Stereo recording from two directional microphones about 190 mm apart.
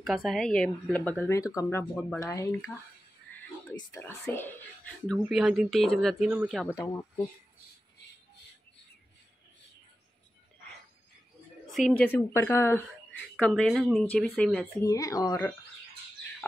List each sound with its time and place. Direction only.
0.0 s speech: centre (ahead or behind)
6.7 s speech: 15° left (ahead or behind)
11.6 s speech: centre (ahead or behind)
14.8 s speech: 15° left (ahead or behind)